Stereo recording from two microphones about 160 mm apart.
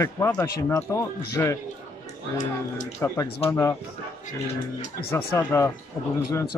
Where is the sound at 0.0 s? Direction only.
15° left (ahead or behind).